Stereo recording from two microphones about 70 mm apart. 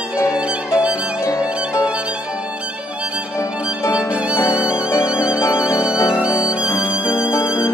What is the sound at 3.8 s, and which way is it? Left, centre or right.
Violin, left.